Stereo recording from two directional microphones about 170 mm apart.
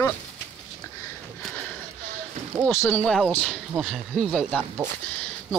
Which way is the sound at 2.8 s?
5° left (ahead or behind).